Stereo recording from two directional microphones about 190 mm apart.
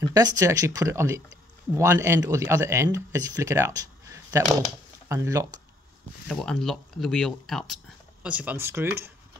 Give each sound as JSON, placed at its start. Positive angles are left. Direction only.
{"t": 0.1, "sound": "speech", "side_deg": -20}
{"t": 6.2, "sound": "speech", "side_deg": 0}